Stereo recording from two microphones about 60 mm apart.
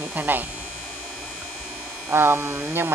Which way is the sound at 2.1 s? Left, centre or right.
Right.